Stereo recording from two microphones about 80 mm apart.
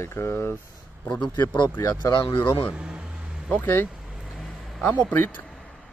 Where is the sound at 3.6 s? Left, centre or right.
Left.